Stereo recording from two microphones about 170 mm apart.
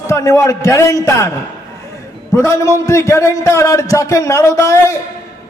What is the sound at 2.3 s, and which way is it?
A man's voice, 15° left (ahead or behind).